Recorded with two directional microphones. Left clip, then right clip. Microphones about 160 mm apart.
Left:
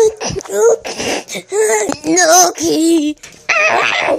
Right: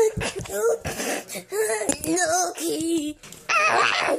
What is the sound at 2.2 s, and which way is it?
Child singing, 45° left (ahead or behind).